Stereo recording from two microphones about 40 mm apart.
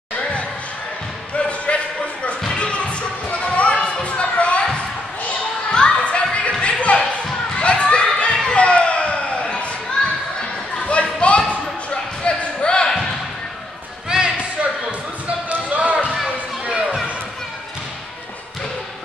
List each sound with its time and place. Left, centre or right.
1.7 s a sound: left
2.5 s music: left
5.7 s a sound: left
10.0 s children playing: left
10.8 s basketball bounce: left
14.0 s basketball bounce: right
16.3 s children playing: right